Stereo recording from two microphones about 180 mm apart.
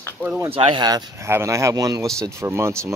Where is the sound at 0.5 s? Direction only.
30° right (ahead or behind).